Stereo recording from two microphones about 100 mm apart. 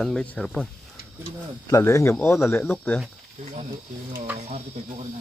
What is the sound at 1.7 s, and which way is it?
Speech, 30° left (ahead or behind).